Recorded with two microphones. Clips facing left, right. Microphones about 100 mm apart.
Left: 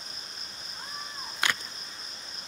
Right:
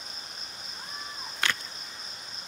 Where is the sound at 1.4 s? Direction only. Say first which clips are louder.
Left 1 dB; 15° left (ahead or behind).